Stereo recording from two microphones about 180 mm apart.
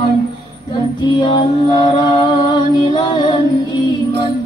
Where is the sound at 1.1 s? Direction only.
25° left (ahead or behind).